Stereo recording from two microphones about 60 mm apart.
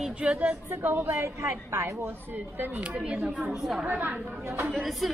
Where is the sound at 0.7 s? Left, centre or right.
Right.